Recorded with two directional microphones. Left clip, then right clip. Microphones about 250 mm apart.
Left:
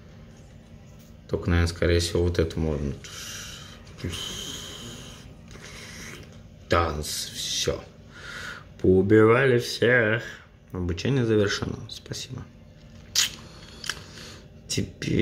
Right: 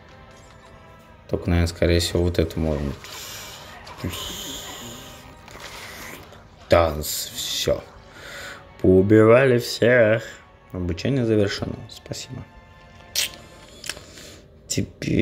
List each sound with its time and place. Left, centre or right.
1.3 s speech: centre
2.7 s speech: centre
3.0 s rub: centre
4.0 s a sound: centre
6.7 s speech: centre
8.2 s music: centre
9.0 s speech: centre
13.1 s music: centre
13.7 s a sound: centre
14.7 s speech: centre